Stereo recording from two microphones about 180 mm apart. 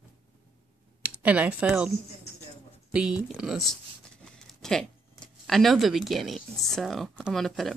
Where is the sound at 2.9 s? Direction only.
5° right (ahead or behind).